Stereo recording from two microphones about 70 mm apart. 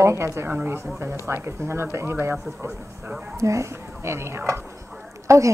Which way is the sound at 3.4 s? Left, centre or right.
Right.